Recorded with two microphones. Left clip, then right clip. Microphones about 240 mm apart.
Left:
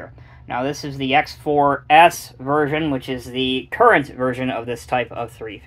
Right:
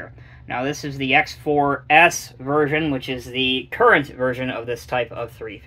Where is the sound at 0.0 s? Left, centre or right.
Centre.